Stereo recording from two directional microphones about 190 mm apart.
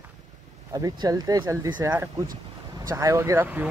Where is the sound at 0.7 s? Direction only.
20° right (ahead or behind).